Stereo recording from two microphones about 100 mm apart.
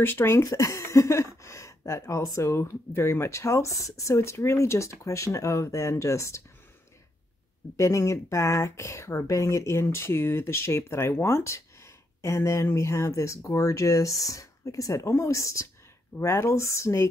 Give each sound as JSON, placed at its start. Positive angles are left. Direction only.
{"t": 0.0, "sound": "speech", "side_deg": 25}
{"t": 7.7, "sound": "speech", "side_deg": 30}